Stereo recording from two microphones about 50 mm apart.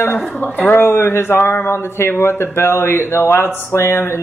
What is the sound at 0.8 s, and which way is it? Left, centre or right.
Speech, left.